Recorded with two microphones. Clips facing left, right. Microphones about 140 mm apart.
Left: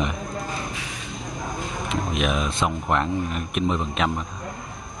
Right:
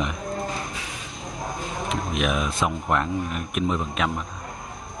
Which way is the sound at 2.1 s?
Centre (ahead or behind).